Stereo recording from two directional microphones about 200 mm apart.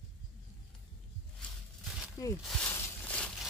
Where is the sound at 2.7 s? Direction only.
10° left (ahead or behind).